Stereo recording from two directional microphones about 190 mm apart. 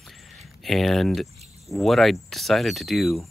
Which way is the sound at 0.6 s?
Centre (ahead or behind).